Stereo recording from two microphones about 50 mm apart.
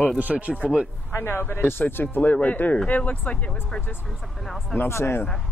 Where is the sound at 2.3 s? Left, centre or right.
Left.